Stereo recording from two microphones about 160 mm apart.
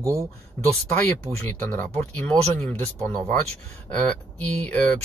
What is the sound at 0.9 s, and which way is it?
Speech, 10° left (ahead or behind).